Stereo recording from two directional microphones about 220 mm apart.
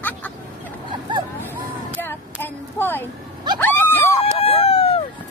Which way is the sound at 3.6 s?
10° left (ahead or behind).